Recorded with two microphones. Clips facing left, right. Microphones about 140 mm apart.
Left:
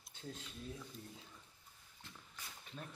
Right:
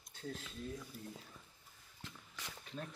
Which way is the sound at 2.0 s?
90° right.